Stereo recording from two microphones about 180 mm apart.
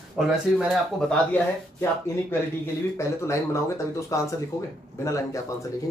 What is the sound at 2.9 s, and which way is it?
Speech, 15° left (ahead or behind).